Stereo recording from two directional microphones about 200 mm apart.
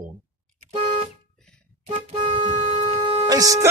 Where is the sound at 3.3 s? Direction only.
15° right (ahead or behind).